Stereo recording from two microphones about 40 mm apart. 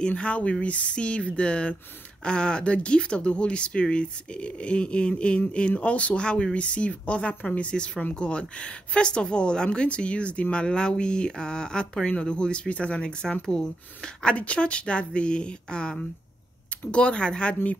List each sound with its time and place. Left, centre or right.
0.2 s speech: left
14.3 s speech: left